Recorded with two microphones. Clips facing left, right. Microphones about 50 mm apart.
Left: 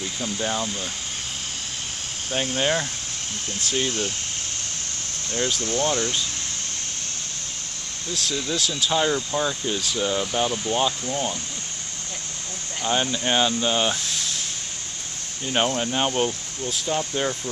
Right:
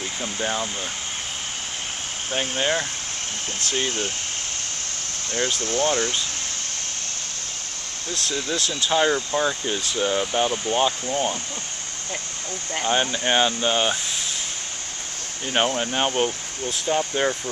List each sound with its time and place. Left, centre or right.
0.2 s speech: centre
2.6 s speech: centre
5.3 s speech: centre
8.1 s speech: centre
12.8 s speech: centre
15.4 s speech: centre